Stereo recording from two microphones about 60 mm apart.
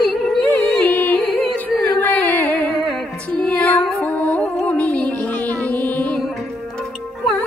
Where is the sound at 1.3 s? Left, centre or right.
Centre.